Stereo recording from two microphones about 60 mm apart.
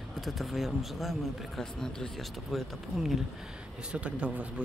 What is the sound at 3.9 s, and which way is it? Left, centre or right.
Speech, centre.